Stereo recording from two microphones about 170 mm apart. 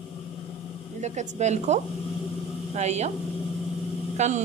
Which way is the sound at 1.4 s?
40° right (ahead or behind).